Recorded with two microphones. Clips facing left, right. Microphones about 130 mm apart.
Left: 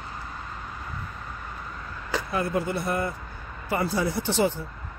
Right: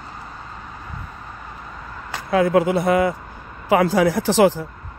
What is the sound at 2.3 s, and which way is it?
Speech, 90° right.